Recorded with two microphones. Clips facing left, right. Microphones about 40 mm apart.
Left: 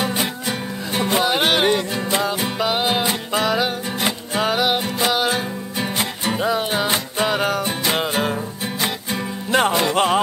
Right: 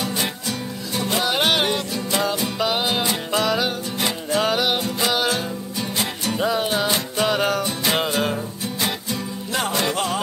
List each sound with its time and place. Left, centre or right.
0.0 s music: left
1.1 s music: centre
2.9 s music: centre
6.3 s music: centre
9.1 s music: left